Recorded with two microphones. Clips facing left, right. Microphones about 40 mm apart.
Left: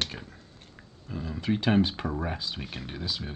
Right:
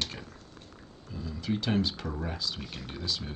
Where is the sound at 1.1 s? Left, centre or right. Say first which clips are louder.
Left 4 dB; left; by 3.3 s centre.